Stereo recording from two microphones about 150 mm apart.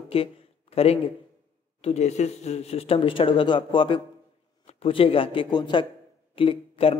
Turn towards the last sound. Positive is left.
turn(degrees=40)  # may be behind; listen again after turning